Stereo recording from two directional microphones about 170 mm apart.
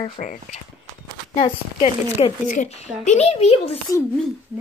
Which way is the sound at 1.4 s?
35° left (ahead or behind).